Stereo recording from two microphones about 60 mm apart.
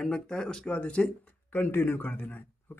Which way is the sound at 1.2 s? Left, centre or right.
Left.